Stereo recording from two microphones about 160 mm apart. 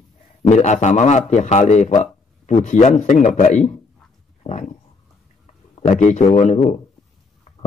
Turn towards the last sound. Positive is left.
turn(degrees=50)  # may be behind; listen again after turning